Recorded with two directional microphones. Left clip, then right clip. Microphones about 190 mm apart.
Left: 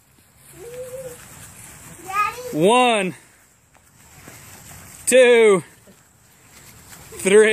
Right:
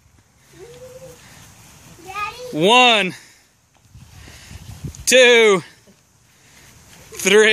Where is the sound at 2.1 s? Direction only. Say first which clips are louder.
Left 4 dB; centre (ahead or behind).